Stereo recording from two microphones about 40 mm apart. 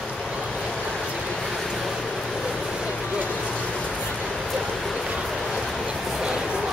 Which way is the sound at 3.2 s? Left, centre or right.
Left.